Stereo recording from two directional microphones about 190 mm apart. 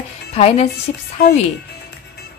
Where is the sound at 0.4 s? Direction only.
35° left (ahead or behind).